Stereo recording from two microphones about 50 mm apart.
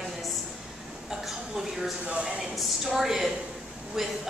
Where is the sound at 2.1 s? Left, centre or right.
Right.